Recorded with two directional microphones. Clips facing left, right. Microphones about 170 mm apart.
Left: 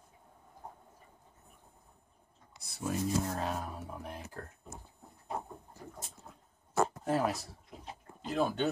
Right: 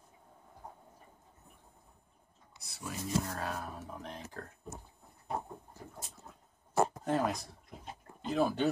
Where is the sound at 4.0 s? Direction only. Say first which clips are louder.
Left 1 dB; 10° left (ahead or behind).